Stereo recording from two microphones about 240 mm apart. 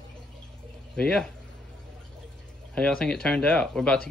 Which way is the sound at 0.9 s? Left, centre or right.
Centre.